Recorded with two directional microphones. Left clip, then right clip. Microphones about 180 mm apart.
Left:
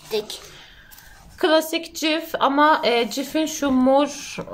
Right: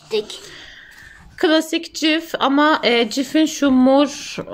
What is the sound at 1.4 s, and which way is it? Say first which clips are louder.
A woman's voice: right 2 dB; 40° right (ahead or behind).